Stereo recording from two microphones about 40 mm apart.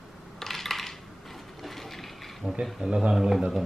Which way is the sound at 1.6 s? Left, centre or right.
Centre.